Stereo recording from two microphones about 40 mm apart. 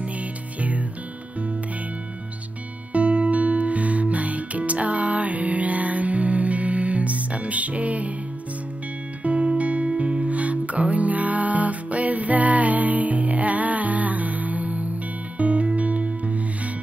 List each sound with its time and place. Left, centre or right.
0.6 s music: right
2.9 s music: right
9.2 s music: right